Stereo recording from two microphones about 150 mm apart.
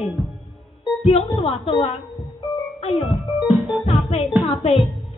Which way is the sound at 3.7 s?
Centre (ahead or behind).